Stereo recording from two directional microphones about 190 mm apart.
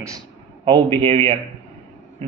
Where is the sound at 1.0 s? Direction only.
30° right (ahead or behind).